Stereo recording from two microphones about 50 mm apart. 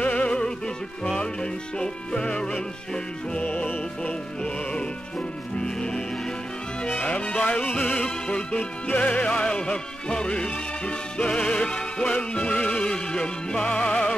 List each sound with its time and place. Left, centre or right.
0.0 s music: left
1.0 s music: centre
3.4 s music: left
5.6 s music: centre
7.1 s music: left
8.3 s music: centre